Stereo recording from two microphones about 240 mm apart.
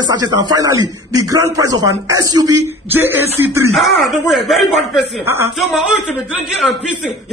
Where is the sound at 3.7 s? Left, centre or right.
Centre.